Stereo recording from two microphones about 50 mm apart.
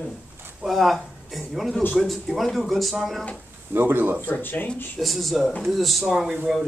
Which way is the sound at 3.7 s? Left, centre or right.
Right.